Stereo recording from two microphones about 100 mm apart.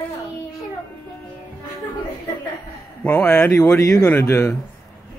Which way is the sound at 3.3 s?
30° left (ahead or behind).